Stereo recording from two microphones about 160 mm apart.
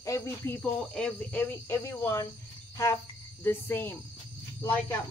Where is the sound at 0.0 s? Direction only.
20° left (ahead or behind).